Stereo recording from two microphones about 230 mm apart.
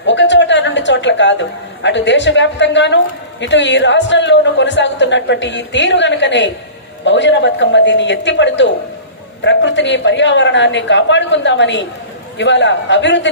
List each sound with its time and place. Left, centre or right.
0.0 s a woman's voice: left